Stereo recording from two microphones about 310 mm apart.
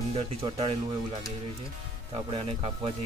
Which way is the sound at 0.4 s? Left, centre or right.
Centre.